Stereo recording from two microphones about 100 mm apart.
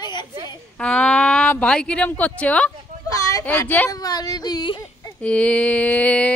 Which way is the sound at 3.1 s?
35° left (ahead or behind).